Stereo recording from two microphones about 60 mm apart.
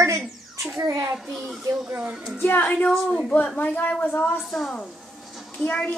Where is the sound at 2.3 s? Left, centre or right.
Left.